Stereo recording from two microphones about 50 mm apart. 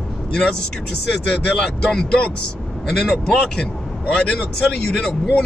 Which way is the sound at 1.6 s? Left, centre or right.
Centre.